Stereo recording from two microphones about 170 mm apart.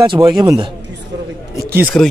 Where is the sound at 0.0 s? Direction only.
25° right (ahead or behind).